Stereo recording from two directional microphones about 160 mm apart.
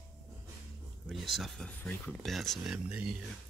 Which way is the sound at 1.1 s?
Centre (ahead or behind).